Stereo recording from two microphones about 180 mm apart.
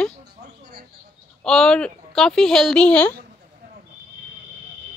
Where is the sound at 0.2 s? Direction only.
60° right (ahead or behind).